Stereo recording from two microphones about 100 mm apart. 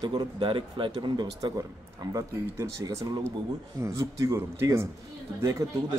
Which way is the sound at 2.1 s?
30° right (ahead or behind).